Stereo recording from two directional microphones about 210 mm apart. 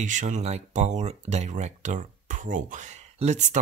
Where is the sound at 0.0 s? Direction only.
35° right (ahead or behind).